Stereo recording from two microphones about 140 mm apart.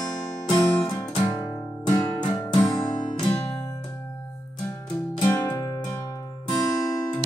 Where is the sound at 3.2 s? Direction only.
30° left (ahead or behind).